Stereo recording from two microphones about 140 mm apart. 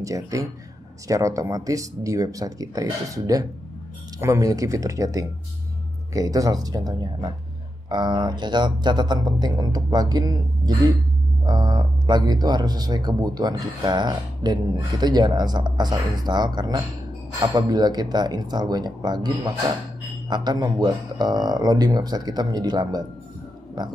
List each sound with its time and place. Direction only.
0.0 s speech: 25° right (ahead or behind)